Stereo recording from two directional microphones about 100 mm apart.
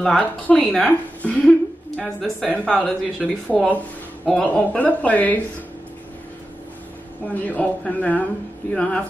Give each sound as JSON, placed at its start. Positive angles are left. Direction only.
{"t": 0.0, "sound": "a woman's voice", "side_deg": 10}
{"t": 7.4, "sound": "speech", "side_deg": 15}